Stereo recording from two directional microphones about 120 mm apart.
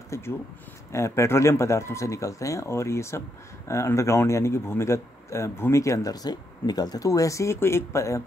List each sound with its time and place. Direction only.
0.1 s speech: 25° left (ahead or behind)